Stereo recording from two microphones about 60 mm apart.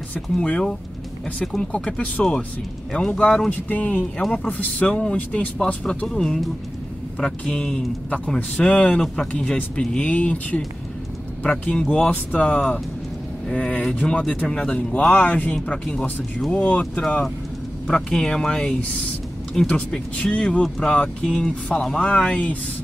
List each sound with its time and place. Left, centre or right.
0.5 s speech: centre
1.7 s speech: left
3.6 s speech: left; by 9.3 s centre
9.3 s speech: left